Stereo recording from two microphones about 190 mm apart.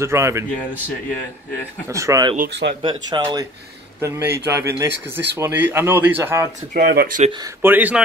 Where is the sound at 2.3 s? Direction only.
50° right (ahead or behind).